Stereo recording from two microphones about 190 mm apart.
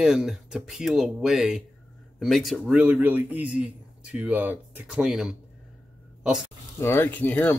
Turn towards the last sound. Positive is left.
turn(degrees=10)  # may be behind; listen again after turning